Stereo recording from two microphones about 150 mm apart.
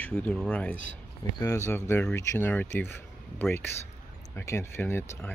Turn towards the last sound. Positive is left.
turn(degrees=15)  # may be behind; listen again after turning